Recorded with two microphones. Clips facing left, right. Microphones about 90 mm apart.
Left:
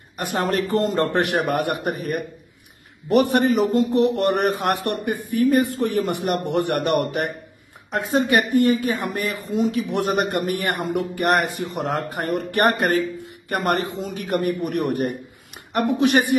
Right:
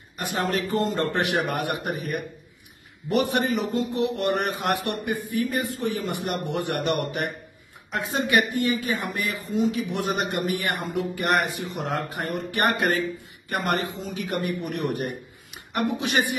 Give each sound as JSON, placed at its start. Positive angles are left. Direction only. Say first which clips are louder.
{"t": 0.2, "sound": "a man's voice", "louder": "left 4 dB", "side_deg": 50}